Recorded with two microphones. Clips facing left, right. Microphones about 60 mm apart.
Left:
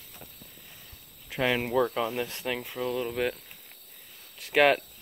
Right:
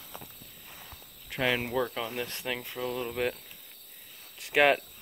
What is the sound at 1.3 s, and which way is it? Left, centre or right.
Speech, centre.